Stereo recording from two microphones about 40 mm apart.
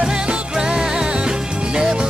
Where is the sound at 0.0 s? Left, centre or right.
Centre.